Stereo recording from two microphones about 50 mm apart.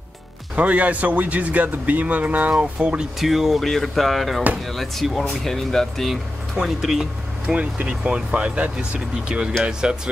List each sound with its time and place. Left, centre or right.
0.6 s a man's voice: right
3.2 s speech: centre
6.5 s speech: centre
7.5 s a man's voice: right